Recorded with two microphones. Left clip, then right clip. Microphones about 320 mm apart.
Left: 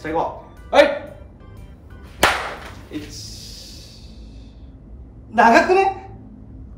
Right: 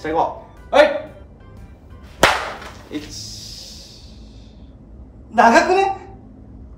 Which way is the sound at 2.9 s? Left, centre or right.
Right.